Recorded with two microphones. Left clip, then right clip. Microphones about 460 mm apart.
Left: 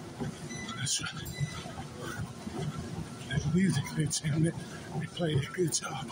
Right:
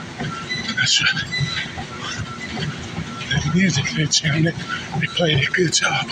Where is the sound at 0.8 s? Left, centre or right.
Left.